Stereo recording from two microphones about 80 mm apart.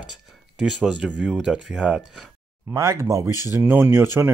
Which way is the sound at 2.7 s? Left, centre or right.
Right.